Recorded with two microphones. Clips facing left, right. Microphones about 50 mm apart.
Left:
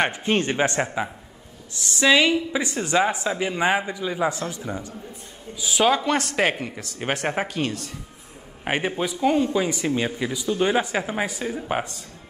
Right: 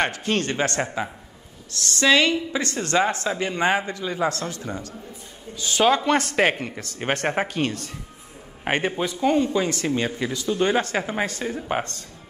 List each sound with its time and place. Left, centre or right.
0.0 s speech: centre